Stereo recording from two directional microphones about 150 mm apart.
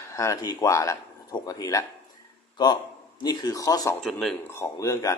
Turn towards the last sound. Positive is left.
turn(degrees=20)  # may be behind; listen again after turning